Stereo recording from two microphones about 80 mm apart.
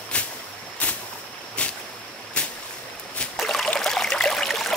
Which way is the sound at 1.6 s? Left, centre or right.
Centre.